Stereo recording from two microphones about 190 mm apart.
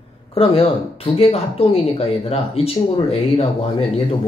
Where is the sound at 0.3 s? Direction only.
30° left (ahead or behind).